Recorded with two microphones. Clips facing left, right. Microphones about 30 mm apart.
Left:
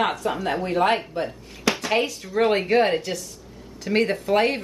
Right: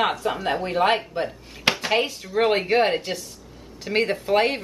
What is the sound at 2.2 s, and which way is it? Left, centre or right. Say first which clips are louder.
Speech: even; centre.